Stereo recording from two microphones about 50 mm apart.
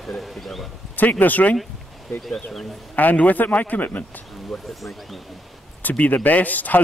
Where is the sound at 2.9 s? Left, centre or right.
Left.